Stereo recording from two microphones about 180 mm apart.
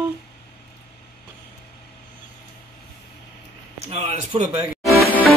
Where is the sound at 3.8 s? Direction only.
35° right (ahead or behind).